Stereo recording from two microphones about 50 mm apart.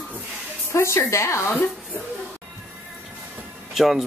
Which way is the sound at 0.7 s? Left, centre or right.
Left.